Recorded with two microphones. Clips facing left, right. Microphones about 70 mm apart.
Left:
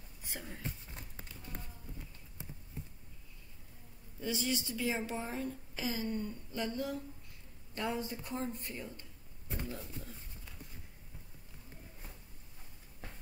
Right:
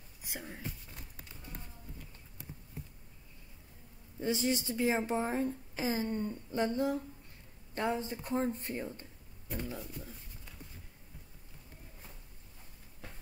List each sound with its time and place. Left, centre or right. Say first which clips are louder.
0.2 s speech: right 2 dB; centre
0.7 s a sound: even; left
4.2 s a woman's voice: right 4 dB; right